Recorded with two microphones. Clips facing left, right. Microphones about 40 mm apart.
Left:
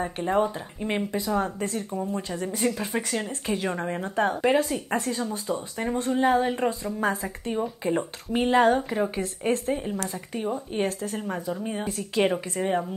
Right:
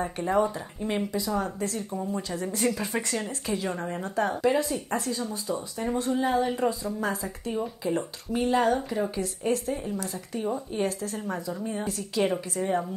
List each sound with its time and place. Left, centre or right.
0.0 s speech: left
2.0 s speech: centre
3.7 s speech: left
6.4 s speech: left